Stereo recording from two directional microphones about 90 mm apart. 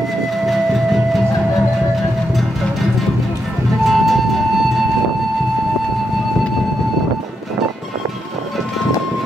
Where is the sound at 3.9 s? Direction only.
Centre (ahead or behind).